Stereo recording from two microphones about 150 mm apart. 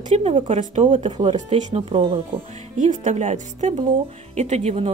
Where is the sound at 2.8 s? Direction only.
55° right (ahead or behind).